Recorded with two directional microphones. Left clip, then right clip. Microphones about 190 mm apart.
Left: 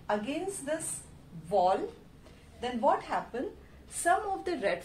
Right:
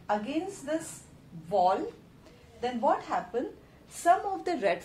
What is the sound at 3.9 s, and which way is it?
Speech, 20° right (ahead or behind).